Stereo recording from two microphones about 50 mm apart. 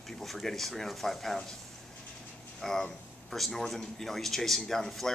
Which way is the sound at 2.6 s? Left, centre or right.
Centre.